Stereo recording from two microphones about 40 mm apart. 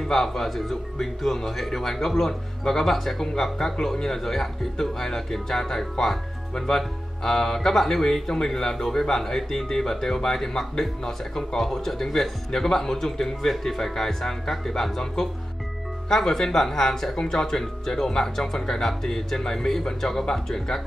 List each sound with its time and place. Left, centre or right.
0.1 s speech: centre